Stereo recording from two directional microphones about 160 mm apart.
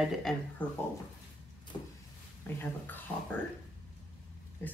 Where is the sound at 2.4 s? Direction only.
15° left (ahead or behind).